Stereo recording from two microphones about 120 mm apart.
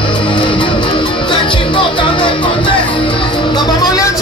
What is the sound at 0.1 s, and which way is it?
Music, 45° left (ahead or behind).